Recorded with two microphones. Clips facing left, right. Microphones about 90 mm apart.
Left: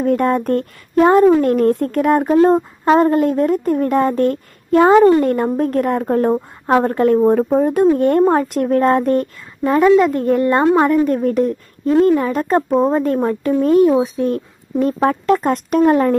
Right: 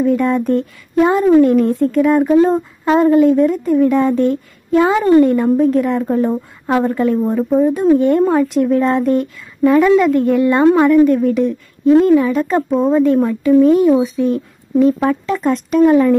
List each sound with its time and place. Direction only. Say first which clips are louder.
0.0 s a woman's voice: right 1 dB; 45° left (ahead or behind)
6.3 s a woman's voice: left 2 dB; 20° left (ahead or behind)
6.8 s a woman's voice: left 2 dB; 50° left (ahead or behind)
9.6 s a woman's voice: right 1 dB; 35° left (ahead or behind)